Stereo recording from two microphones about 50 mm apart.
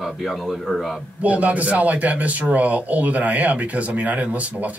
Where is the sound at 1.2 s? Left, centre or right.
Right.